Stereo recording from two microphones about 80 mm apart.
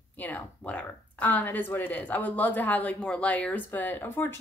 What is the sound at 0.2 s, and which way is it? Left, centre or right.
Speech, centre.